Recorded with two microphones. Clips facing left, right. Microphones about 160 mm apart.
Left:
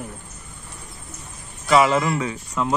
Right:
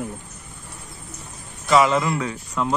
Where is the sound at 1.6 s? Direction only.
Centre (ahead or behind).